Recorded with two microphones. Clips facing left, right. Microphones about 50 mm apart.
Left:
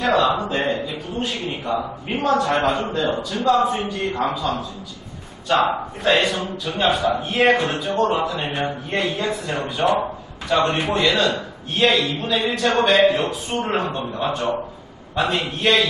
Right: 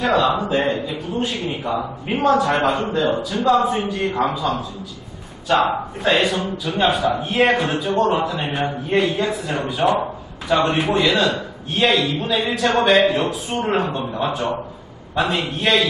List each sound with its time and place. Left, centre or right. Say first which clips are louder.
0.0 s a man's voice: right 1 dB; centre